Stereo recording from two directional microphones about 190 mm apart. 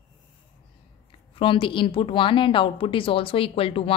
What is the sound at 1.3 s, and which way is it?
A woman's voice, 25° left (ahead or behind).